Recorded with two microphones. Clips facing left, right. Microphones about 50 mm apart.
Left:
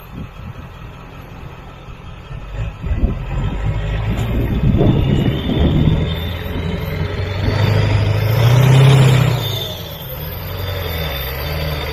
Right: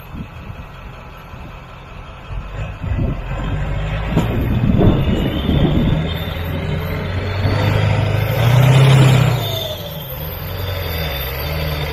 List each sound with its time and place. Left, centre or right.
3.5 s vehicle: centre
6.3 s vehicle: centre
8.7 s vehicle: centre
9.4 s a sound: centre
10.7 s vehicle: centre